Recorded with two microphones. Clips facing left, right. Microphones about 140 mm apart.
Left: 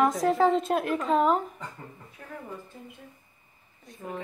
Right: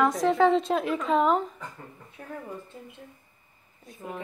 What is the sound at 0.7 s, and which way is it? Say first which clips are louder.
Speech: even; 50° left (ahead or behind).